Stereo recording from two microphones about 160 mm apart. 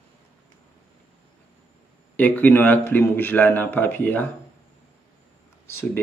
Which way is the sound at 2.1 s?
10° left (ahead or behind).